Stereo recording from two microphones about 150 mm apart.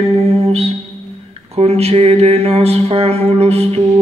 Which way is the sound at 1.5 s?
45° right (ahead or behind).